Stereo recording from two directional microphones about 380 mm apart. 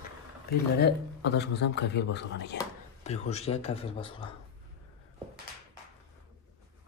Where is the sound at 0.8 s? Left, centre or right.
Left.